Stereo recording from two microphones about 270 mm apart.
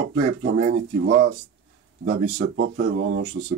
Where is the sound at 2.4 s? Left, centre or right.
Right.